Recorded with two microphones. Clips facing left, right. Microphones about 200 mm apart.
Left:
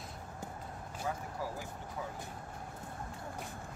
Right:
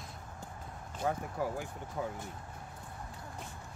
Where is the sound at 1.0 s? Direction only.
55° right (ahead or behind).